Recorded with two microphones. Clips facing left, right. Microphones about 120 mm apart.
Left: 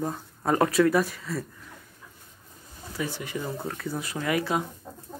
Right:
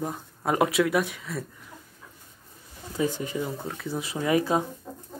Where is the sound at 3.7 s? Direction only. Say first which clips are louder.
Left 1 dB; centre (ahead or behind).